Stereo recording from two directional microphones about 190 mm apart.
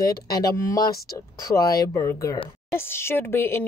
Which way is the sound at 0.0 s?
20° left (ahead or behind).